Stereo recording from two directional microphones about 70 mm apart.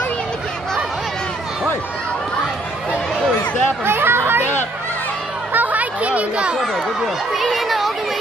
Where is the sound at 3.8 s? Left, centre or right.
Right.